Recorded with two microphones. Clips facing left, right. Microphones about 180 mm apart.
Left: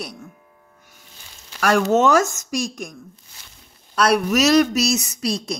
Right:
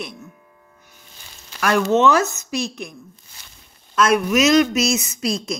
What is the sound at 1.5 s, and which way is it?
Speech, 45° left (ahead or behind).